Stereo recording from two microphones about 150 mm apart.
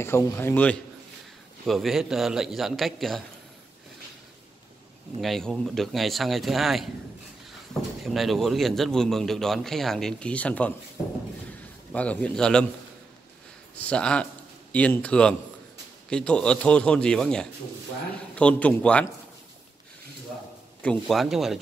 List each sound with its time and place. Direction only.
0.0 s a man's voice: 15° left (ahead or behind)
1.7 s a man's voice: centre (ahead or behind)
5.2 s a man's voice: centre (ahead or behind)
8.0 s a man's voice: centre (ahead or behind)
11.9 s a man's voice: 10° left (ahead or behind)
13.7 s a man's voice: 5° left (ahead or behind)
20.8 s a man's voice: 5° left (ahead or behind)